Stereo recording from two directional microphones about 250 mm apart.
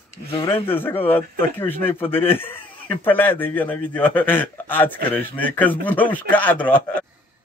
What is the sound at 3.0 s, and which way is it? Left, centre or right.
A man's voice, centre.